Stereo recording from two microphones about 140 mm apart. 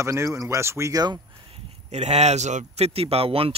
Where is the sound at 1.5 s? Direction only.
50° right (ahead or behind).